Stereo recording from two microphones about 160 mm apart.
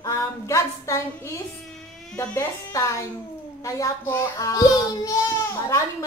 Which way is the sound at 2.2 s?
15° left (ahead or behind).